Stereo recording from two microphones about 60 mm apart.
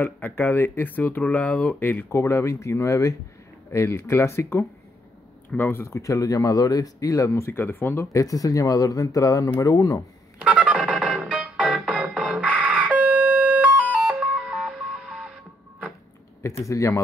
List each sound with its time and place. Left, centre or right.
0.0 s speech: left
2.0 s speech: left
5.9 s speech: left
8.1 s speech: left
10.4 s music: right
12.2 s siren: right
16.4 s speech: left